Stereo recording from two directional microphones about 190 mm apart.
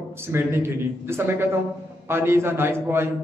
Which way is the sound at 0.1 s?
15° right (ahead or behind).